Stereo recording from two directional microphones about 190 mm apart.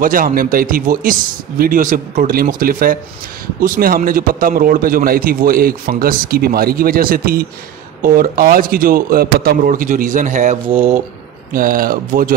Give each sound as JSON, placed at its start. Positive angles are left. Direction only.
{"t": 0.0, "sound": "a man's voice", "side_deg": -45}
{"t": 10.7, "sound": "speech", "side_deg": -30}
{"t": 11.5, "sound": "a man's voice", "side_deg": -50}